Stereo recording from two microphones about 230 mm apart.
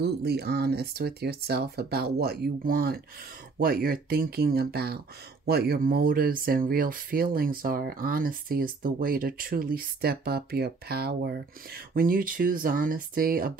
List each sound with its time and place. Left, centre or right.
0.0 s speech: right